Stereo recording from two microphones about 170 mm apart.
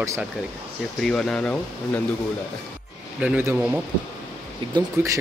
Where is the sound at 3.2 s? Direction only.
10° right (ahead or behind).